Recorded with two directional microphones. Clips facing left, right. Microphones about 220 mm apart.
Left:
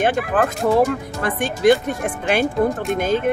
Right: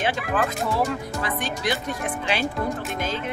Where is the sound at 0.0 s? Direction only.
50° left (ahead or behind).